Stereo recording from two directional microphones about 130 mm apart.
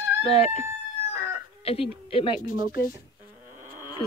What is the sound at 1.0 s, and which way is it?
Chicken, 50° left (ahead or behind).